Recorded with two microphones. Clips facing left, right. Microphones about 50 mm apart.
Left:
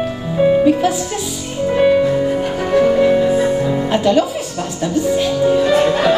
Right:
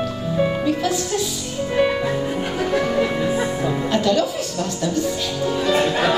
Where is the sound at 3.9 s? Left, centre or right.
Left.